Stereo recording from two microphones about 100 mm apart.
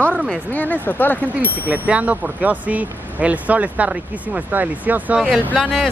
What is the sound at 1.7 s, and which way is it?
Speech, 15° right (ahead or behind).